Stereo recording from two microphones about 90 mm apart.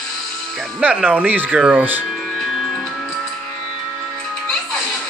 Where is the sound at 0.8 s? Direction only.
15° right (ahead or behind).